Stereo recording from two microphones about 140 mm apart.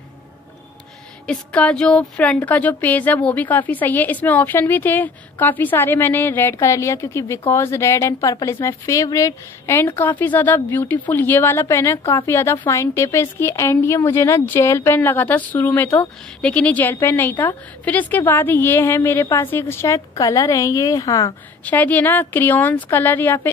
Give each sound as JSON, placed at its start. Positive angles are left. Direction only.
{"t": 1.2, "sound": "a woman's voice", "side_deg": 10}
{"t": 21.6, "sound": "a woman's voice", "side_deg": 10}